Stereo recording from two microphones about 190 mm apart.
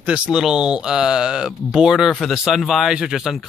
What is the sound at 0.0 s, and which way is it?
Speech, 5° right (ahead or behind).